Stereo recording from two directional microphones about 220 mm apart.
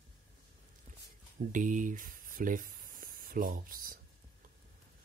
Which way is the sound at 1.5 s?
35° right (ahead or behind).